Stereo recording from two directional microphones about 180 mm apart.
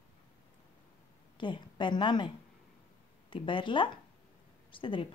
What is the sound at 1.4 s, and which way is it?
A woman's voice, 25° left (ahead or behind).